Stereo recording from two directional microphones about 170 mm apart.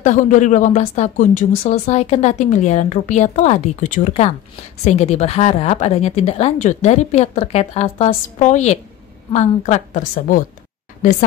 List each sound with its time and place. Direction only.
0.0 s speech: 50° left (ahead or behind)